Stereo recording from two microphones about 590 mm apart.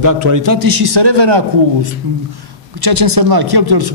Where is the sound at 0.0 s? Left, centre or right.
Right.